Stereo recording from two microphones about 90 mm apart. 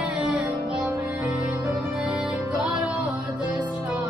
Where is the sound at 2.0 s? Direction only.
15° right (ahead or behind).